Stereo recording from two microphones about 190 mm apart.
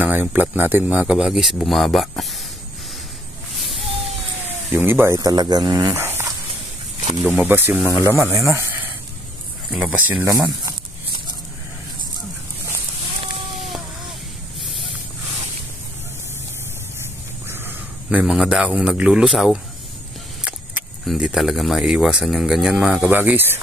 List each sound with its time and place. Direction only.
0.0 s speech: 10° right (ahead or behind)
4.7 s speech: 10° right (ahead or behind)
10.3 s speech: 20° right (ahead or behind)
17.5 s a man's voice: 10° right (ahead or behind)